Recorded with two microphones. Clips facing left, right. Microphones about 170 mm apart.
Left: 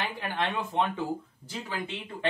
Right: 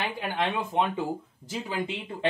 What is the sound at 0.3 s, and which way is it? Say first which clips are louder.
Speech: right 2 dB; 15° right (ahead or behind).